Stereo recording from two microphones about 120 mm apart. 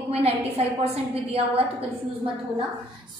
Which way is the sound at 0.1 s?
55° right (ahead or behind).